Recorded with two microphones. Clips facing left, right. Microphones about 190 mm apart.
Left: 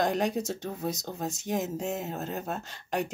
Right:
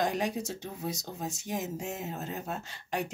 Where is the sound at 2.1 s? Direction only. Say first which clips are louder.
Left 3 dB; 60° left (ahead or behind).